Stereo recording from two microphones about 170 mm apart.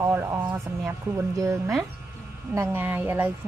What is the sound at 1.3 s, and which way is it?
Speech, 20° right (ahead or behind).